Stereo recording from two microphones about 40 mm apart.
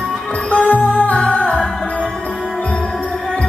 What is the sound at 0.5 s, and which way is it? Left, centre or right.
Music, left.